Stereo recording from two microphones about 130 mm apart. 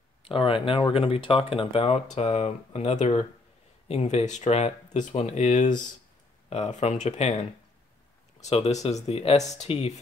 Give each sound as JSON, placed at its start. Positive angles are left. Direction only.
{"t": 0.2, "sound": "speech", "side_deg": 45}